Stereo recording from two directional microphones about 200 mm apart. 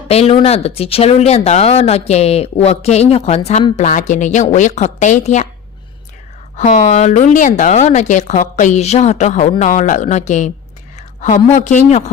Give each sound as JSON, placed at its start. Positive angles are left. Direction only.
{"t": 0.1, "sound": "speech", "side_deg": 30}
{"t": 6.5, "sound": "speech", "side_deg": 35}